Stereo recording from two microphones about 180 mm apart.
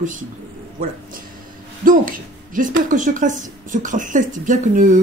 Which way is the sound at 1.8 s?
50° right (ahead or behind).